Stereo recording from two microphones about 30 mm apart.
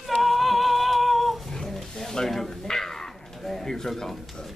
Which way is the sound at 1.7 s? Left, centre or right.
Centre.